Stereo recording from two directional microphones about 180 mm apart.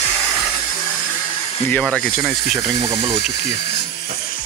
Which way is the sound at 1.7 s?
5° left (ahead or behind).